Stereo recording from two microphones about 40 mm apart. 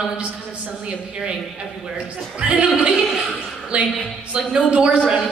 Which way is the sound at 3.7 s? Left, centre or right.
Right.